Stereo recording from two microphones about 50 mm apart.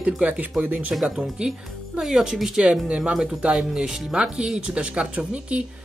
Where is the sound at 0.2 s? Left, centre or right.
Right.